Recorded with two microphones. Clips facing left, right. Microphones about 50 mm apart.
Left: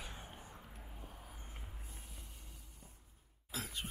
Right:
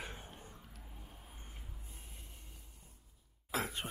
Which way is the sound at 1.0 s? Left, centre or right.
Left.